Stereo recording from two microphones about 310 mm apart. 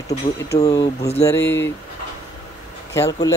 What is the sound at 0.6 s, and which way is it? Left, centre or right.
Speech, centre.